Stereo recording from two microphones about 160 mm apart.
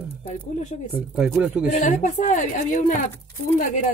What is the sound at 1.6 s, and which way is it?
Speech, 50° left (ahead or behind).